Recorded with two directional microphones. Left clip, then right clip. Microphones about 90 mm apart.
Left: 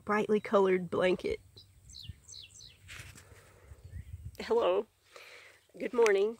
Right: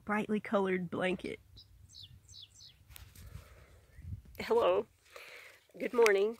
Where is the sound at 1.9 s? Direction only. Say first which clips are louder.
Left 3 dB; 15° left (ahead or behind).